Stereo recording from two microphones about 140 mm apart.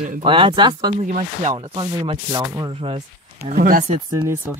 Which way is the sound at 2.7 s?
40° right (ahead or behind).